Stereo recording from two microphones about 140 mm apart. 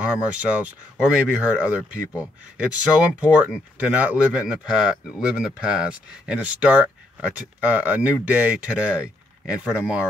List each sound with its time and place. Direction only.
0.0 s speech: 10° right (ahead or behind)